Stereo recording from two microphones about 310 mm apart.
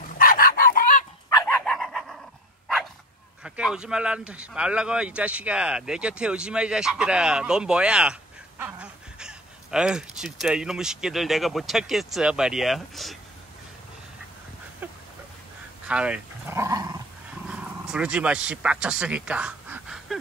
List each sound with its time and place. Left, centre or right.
0.2 s chicken: left
1.3 s dog: centre
3.4 s speech: centre
14.8 s a sound: centre
15.9 s dog: centre
17.5 s speech: centre